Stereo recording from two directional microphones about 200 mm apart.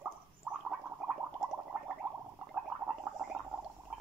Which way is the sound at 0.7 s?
Centre (ahead or behind).